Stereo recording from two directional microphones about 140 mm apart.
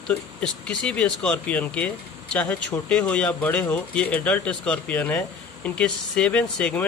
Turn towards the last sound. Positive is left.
turn(degrees=10)  # may be behind; listen again after turning